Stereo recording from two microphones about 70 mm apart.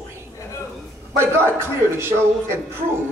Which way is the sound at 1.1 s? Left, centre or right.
Right.